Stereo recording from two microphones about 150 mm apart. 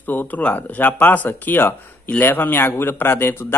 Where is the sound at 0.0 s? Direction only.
10° left (ahead or behind).